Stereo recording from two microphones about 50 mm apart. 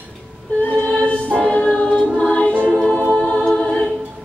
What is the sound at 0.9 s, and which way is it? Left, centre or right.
Choir, centre.